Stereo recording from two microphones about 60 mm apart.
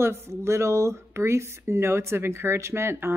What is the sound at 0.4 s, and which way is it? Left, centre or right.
Speech, right.